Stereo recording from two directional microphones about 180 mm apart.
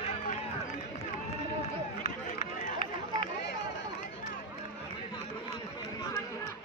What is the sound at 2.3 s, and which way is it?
Run, 45° left (ahead or behind).